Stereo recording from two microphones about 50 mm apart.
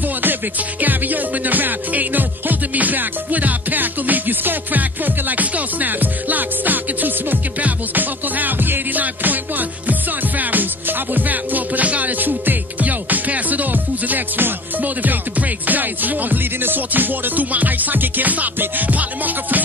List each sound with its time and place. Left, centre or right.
0.2 s music: right